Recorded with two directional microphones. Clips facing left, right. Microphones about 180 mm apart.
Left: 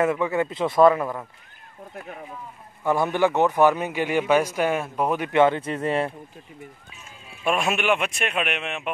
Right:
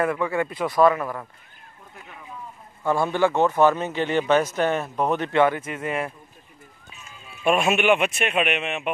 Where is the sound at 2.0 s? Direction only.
50° left (ahead or behind).